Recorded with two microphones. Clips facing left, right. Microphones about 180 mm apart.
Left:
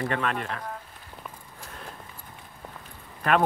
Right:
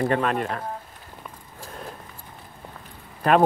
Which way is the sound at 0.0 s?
40° right (ahead or behind).